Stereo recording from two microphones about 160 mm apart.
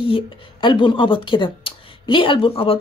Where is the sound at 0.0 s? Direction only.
30° left (ahead or behind).